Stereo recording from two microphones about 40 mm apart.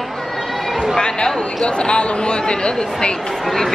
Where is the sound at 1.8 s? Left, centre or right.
Left.